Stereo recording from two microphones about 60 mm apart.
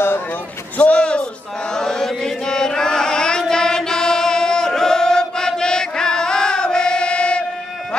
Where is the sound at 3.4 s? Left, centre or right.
Centre.